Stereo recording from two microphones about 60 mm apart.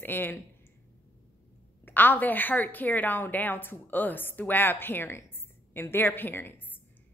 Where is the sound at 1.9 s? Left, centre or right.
Left.